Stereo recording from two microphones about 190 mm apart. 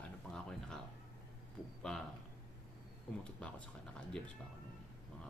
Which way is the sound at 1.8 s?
Centre (ahead or behind).